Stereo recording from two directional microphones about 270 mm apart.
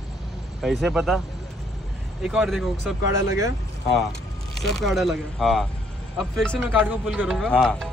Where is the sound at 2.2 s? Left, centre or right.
Centre.